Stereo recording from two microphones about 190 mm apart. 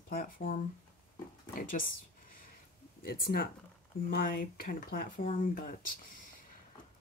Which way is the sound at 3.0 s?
50° left (ahead or behind).